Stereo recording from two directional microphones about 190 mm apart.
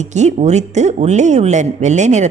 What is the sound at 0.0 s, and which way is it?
A woman's voice, 35° right (ahead or behind).